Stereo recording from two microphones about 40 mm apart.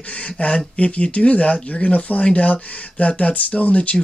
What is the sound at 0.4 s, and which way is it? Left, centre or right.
Speech, left.